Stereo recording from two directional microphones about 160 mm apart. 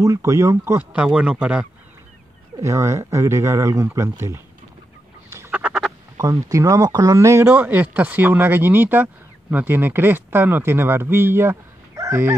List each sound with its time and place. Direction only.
0.0 s speech: 20° right (ahead or behind)
0.9 s speech: 5° right (ahead or behind)
2.6 s speech: 20° right (ahead or behind)
5.3 s duck: 10° right (ahead or behind)
6.1 s speech: 20° right (ahead or behind)